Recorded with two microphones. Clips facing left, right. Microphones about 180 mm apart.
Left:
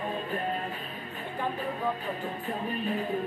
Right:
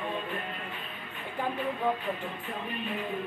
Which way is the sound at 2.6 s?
40° left (ahead or behind).